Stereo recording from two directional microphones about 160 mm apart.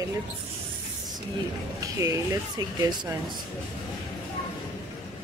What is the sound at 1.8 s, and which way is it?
Speech, 20° right (ahead or behind).